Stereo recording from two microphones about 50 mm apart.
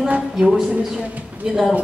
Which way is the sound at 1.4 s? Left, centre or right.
Centre.